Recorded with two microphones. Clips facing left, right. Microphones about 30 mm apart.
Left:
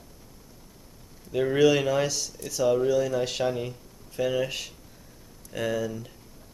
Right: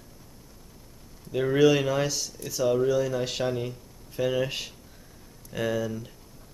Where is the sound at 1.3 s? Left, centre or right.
Centre.